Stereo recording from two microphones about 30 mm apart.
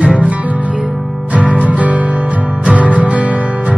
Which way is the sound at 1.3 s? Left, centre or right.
Right.